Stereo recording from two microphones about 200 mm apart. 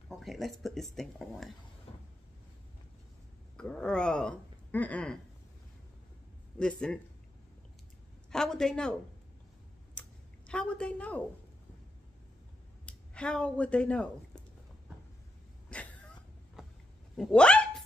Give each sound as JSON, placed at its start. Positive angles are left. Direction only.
{"t": 0.1, "sound": "speech", "side_deg": 0}
{"t": 1.9, "sound": "vehicle", "side_deg": 30}
{"t": 3.5, "sound": "speech", "side_deg": 5}
{"t": 6.6, "sound": "speech", "side_deg": 5}
{"t": 8.3, "sound": "speech", "side_deg": 5}
{"t": 9.9, "sound": "a sound", "side_deg": 5}
{"t": 12.8, "sound": "speech", "side_deg": 5}
{"t": 15.7, "sound": "a sound", "side_deg": 5}
{"t": 17.2, "sound": "hiccup", "side_deg": 5}